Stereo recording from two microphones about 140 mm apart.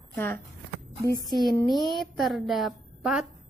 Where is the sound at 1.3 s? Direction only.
Centre (ahead or behind).